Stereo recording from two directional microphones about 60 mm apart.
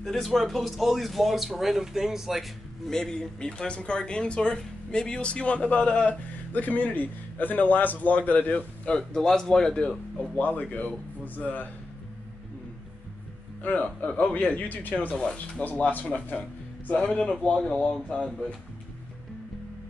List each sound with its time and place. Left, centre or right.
0.0 s speech: centre
2.9 s speech: centre; by 8.9 s left
8.9 s speech: centre
10.4 s speech: left
13.6 s speech: left
15.6 s speech: left